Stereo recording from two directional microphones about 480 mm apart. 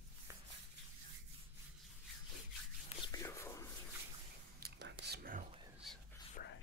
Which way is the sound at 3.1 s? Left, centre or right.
Centre.